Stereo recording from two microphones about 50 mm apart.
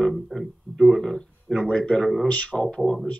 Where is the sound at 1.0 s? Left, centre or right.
Centre.